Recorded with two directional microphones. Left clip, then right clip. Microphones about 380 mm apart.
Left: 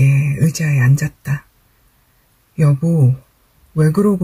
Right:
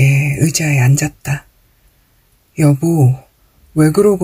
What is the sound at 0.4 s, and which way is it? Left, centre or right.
Speech, centre.